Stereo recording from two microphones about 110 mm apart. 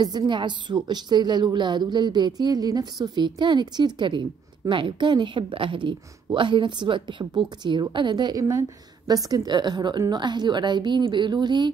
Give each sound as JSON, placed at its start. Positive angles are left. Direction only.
{"t": 0.0, "sound": "a woman's voice", "side_deg": -40}